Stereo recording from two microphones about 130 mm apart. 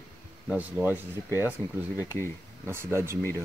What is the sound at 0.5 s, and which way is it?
Speech, 10° right (ahead or behind).